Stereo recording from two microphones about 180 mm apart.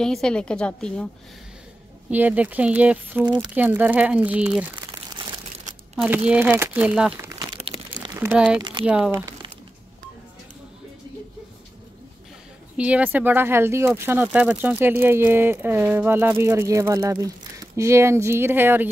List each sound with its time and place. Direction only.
0.0 s a woman's voice: 5° left (ahead or behind)
2.0 s speech: 10° right (ahead or behind)
4.7 s crumpling: 25° right (ahead or behind)
6.0 s speech: 10° right (ahead or behind)
7.2 s crumpling: 20° right (ahead or behind)
8.2 s a woman's voice: 5° right (ahead or behind)
12.7 s speech: 5° right (ahead or behind)